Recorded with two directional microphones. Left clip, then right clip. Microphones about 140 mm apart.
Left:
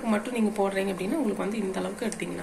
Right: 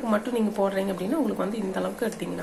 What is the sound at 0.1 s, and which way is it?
A woman's voice, 35° right (ahead or behind).